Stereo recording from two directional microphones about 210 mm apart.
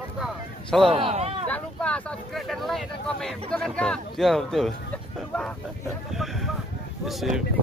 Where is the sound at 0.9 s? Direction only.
30° right (ahead or behind).